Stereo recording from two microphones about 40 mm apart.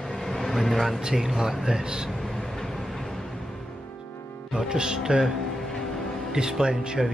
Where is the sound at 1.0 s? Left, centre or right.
Centre.